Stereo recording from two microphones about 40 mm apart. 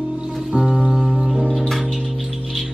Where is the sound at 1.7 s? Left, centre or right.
Centre.